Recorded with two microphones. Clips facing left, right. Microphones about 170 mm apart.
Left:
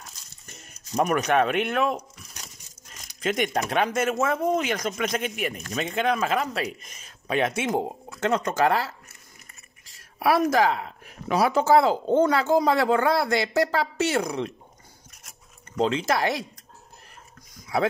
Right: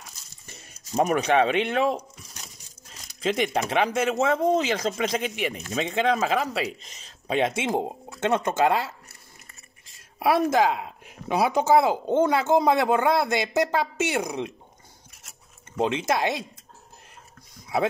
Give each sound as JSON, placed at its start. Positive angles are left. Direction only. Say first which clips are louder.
{"t": 0.9, "sound": "a woman's voice", "louder": "right 1 dB", "side_deg": -25}
{"t": 3.2, "sound": "a woman's voice", "louder": "right 1 dB", "side_deg": -30}
{"t": 15.7, "sound": "a woman's voice", "louder": "left 1 dB", "side_deg": -20}